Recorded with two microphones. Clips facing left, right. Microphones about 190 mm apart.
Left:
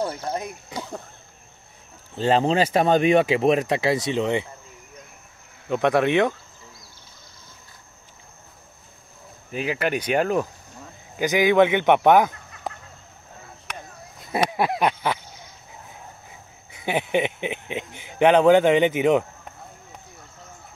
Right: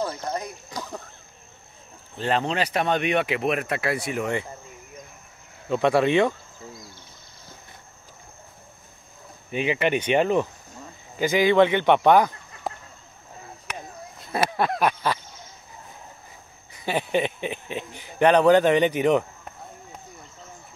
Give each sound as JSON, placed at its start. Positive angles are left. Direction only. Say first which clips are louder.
{"t": 0.0, "sound": "a sound", "louder": "left 1 dB", "side_deg": 15}
{"t": 2.1, "sound": "speech", "louder": "left 5 dB", "side_deg": 30}
{"t": 5.7, "sound": "speech", "louder": "even", "side_deg": 15}
{"t": 9.5, "sound": "speech", "louder": "right 2 dB", "side_deg": 0}
{"t": 12.7, "sound": "a sound", "louder": "right 1 dB", "side_deg": 0}
{"t": 14.9, "sound": "speech", "louder": "left 1 dB", "side_deg": 15}
{"t": 16.8, "sound": "speech", "louder": "left 1 dB", "side_deg": 15}